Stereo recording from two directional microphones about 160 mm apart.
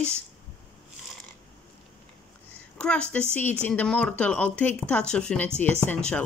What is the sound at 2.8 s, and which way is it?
Speech, 5° left (ahead or behind).